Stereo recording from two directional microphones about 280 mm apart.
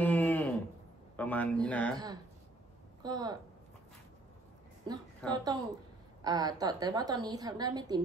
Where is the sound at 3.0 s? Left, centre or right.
Centre.